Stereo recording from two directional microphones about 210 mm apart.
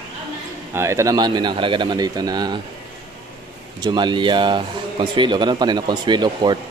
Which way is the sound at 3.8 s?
20° right (ahead or behind).